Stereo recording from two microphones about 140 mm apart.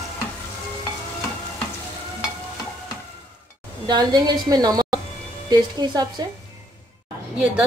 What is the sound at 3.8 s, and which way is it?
A woman's voice, 30° right (ahead or behind).